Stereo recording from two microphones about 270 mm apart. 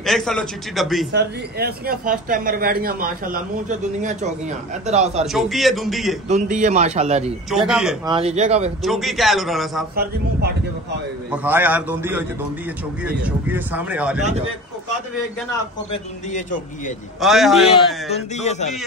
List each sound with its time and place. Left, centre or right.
0.0 s speech: centre
1.1 s a man's voice: right
5.2 s speech: centre
6.2 s a man's voice: right
7.5 s speech: centre
8.1 s a man's voice: right
8.8 s speech: centre
11.3 s a man's voice: centre
15.9 s a man's voice: left
17.2 s speech: centre
18.1 s a man's voice: left